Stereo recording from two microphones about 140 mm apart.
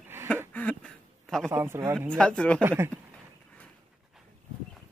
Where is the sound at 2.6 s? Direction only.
15° right (ahead or behind).